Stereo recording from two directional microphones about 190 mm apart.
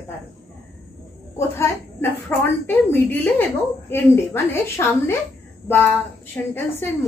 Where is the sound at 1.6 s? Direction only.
10° left (ahead or behind).